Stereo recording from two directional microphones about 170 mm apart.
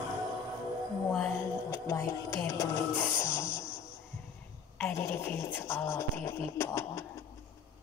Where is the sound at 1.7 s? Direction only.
15° left (ahead or behind).